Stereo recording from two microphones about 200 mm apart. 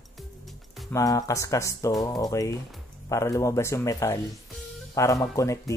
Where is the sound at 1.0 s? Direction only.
15° left (ahead or behind).